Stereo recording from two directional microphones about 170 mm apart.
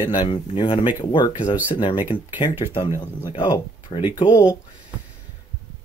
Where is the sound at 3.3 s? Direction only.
30° left (ahead or behind).